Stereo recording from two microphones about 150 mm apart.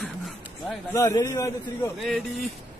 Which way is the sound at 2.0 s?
Centre (ahead or behind).